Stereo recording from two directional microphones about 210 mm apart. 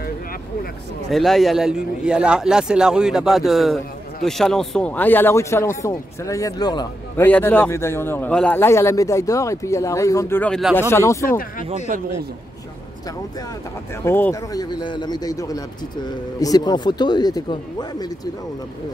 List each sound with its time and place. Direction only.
1.1 s a man's voice: centre (ahead or behind); by 7.2 s 20° left (ahead or behind)
7.2 s a man's voice: 10° left (ahead or behind)
10.8 s a man's voice: 10° left (ahead or behind)
14.0 s a man's voice: 10° left (ahead or behind)